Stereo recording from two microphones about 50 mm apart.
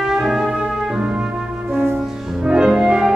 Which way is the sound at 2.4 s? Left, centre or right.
Centre.